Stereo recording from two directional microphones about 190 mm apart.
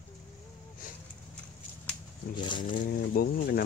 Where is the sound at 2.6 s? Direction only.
50° left (ahead or behind).